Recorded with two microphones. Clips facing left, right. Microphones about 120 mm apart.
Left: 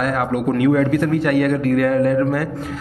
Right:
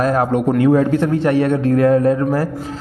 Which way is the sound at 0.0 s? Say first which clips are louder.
Right 4 dB; 30° right (ahead or behind).